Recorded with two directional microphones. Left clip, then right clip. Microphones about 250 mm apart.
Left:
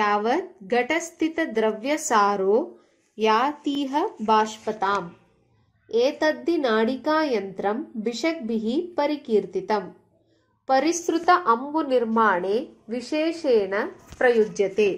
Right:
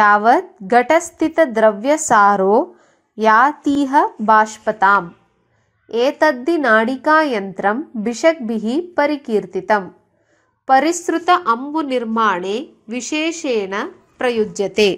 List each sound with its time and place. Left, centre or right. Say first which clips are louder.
0.0 s speech: right 10 dB; right
11.0 s speech: right 5 dB; right